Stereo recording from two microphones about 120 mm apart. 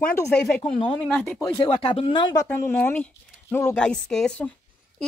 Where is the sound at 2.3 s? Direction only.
20° left (ahead or behind).